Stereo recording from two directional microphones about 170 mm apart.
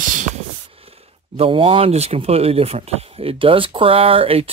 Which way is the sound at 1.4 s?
30° right (ahead or behind).